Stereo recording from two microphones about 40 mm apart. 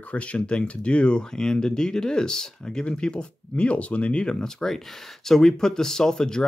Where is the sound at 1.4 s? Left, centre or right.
Centre.